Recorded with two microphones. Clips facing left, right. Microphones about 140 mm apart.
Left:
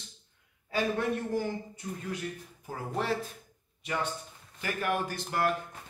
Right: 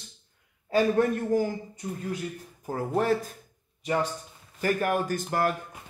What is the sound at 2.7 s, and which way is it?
Speech, 45° right (ahead or behind).